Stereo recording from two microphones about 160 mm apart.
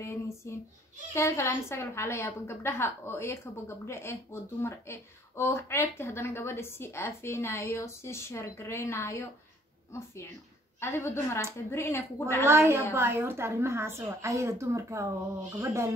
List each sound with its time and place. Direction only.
0.0 s a sound: 15° left (ahead or behind)
1.1 s a woman's voice: 20° left (ahead or behind)
10.8 s a woman's voice: 15° left (ahead or behind)
12.4 s a woman's voice: 15° right (ahead or behind)